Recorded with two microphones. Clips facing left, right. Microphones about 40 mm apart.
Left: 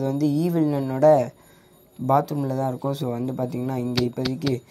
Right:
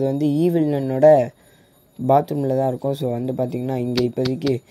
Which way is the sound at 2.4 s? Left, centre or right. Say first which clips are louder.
Right 6 dB; right.